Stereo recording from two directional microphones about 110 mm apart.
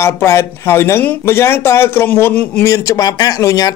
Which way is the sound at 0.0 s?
25° left (ahead or behind).